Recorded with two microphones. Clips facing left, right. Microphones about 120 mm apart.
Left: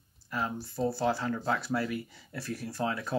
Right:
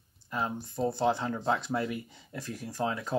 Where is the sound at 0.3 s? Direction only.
20° right (ahead or behind).